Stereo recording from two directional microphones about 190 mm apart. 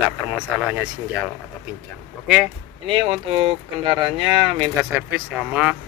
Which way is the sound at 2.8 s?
30° right (ahead or behind).